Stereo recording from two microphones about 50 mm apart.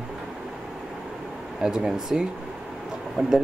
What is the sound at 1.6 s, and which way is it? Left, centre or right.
Speech, centre.